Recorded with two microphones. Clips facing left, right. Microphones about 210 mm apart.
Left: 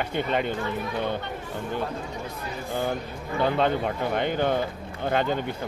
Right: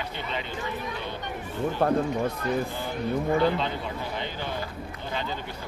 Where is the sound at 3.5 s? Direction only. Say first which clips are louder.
Left 6 dB; 55° left (ahead or behind).